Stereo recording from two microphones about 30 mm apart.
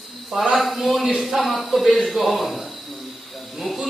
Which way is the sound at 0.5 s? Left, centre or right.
Centre.